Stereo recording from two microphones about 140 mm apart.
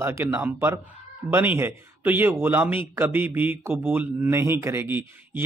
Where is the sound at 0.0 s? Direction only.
15° right (ahead or behind).